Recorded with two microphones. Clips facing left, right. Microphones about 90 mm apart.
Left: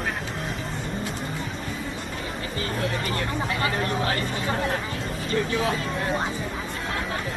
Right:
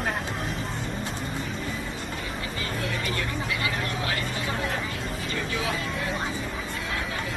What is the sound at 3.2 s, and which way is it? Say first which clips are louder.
Speech: left 3 dB; 40° left (ahead or behind).